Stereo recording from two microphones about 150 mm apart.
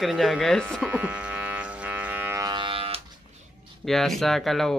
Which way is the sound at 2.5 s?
35° right (ahead or behind).